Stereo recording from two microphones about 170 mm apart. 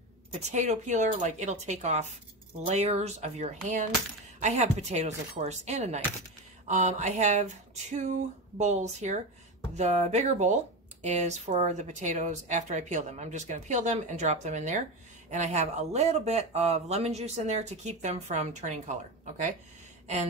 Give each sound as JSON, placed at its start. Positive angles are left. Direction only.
{"t": 0.4, "sound": "speech", "side_deg": -45}